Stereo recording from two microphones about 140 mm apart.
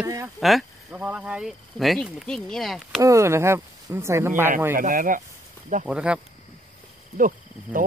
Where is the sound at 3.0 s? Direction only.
20° right (ahead or behind).